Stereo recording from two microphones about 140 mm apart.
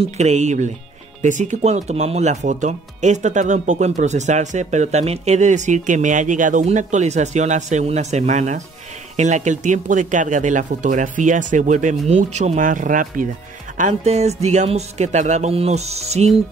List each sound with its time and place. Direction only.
0.0 s speech: 55° right (ahead or behind); by 13.3 s 70° right (ahead or behind)
13.7 s music: 55° right (ahead or behind)